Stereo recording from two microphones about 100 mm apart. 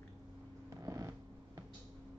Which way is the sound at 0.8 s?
35° right (ahead or behind).